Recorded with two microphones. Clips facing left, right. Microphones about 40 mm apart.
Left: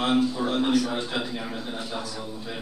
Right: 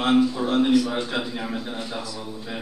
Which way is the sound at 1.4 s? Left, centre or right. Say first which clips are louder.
Right 3 dB; centre.